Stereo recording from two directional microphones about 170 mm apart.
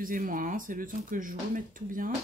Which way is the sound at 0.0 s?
55° right (ahead or behind).